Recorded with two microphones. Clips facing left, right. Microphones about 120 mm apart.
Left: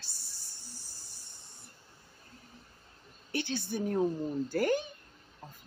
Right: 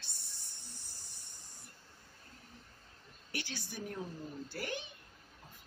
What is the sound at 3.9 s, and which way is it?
Speech, 45° left (ahead or behind).